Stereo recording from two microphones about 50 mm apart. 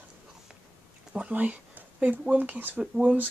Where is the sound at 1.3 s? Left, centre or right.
Right.